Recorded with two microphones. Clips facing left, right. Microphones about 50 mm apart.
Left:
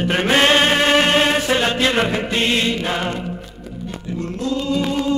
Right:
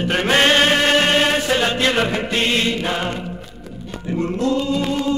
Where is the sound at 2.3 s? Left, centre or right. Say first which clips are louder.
Even; left.